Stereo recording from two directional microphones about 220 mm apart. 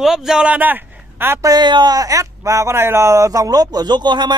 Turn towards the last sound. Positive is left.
turn(degrees=-20)  # may be behind; listen again after turning